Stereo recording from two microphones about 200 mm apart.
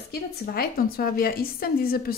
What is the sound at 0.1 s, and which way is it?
A woman's voice, 50° left (ahead or behind).